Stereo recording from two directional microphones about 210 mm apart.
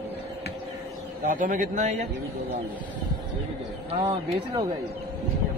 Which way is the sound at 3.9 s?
25° right (ahead or behind).